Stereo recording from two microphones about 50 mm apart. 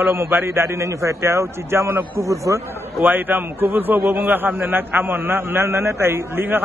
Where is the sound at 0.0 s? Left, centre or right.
Right.